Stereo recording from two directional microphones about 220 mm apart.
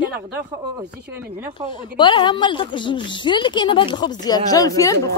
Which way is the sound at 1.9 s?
20° left (ahead or behind).